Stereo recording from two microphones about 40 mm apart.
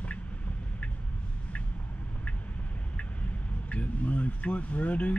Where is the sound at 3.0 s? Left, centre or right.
Left.